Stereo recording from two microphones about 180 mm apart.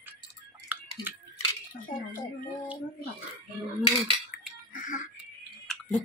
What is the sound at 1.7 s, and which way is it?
Speech, 50° left (ahead or behind).